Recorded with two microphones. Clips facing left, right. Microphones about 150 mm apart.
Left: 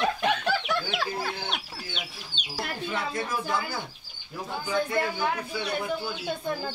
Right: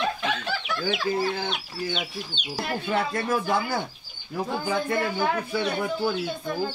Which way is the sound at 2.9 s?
55° right (ahead or behind).